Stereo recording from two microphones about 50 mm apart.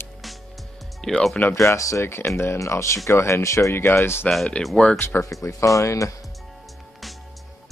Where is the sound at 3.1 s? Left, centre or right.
Left.